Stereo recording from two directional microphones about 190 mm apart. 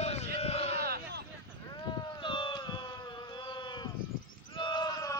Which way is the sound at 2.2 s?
25° left (ahead or behind).